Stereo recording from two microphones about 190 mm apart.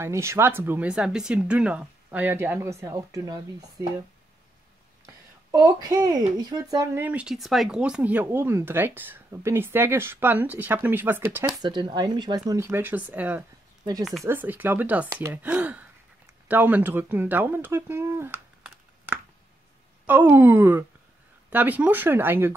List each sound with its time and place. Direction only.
0.0 s a woman's voice: 15° right (ahead or behind)
5.0 s a woman's voice: 20° right (ahead or behind)